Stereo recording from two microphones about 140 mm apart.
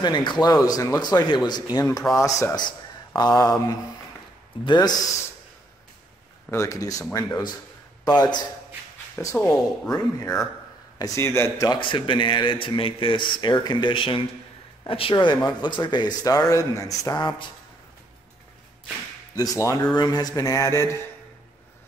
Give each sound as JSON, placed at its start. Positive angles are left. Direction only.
{"t": 0.0, "sound": "speech", "side_deg": 35}
{"t": 6.5, "sound": "a man's voice", "side_deg": 25}
{"t": 11.8, "sound": "speech", "side_deg": 35}
{"t": 19.3, "sound": "speech", "side_deg": 25}